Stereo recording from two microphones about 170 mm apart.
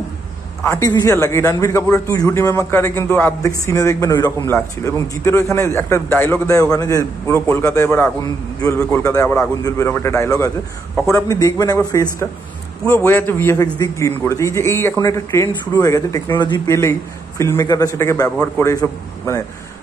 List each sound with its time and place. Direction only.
0.7 s a man's voice: 20° left (ahead or behind)